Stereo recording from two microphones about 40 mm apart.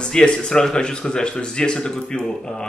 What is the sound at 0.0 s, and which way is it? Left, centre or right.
Speech, left.